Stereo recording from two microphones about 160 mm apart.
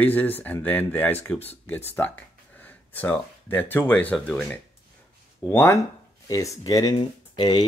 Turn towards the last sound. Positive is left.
turn(degrees=25)  # may be behind; listen again after turning